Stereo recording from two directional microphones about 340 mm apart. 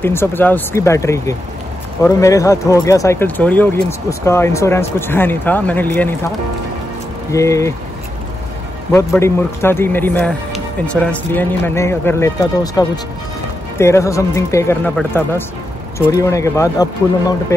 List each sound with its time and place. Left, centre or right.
0.0 s speech: centre
7.3 s speech: centre
8.9 s speech: centre
13.7 s speech: centre